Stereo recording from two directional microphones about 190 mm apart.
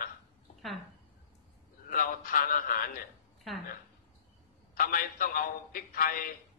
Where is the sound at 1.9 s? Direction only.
45° left (ahead or behind).